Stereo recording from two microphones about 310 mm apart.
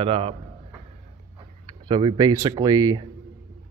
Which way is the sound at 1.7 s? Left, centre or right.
Centre.